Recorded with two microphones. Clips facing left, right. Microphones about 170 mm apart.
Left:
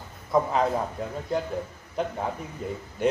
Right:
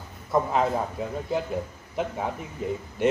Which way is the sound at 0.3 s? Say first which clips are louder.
Even; centre (ahead or behind).